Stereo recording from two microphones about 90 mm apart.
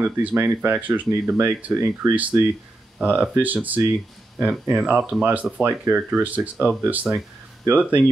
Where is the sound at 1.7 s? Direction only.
35° right (ahead or behind).